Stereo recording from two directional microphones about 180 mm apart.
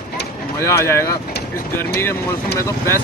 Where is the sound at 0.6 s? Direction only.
15° left (ahead or behind).